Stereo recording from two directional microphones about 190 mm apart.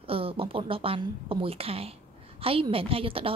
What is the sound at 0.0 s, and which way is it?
A woman's voice, 30° right (ahead or behind).